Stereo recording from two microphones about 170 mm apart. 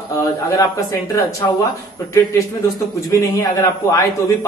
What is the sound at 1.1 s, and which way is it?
Speech, 20° left (ahead or behind).